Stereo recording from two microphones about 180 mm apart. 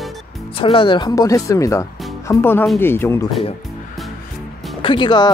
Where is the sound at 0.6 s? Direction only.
30° left (ahead or behind); by 3.3 s 15° left (ahead or behind).